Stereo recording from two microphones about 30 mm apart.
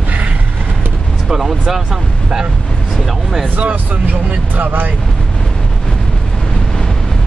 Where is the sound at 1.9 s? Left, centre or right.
Right.